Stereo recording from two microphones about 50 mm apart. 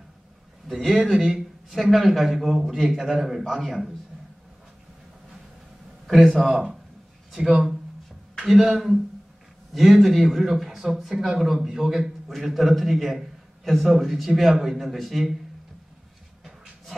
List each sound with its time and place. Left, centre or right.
0.7 s speech: centre
1.1 s a man's voice: centre
1.7 s a man's voice: centre
6.5 s a man's voice: centre